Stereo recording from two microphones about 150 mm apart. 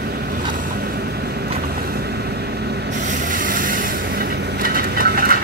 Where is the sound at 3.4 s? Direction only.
65° right (ahead or behind).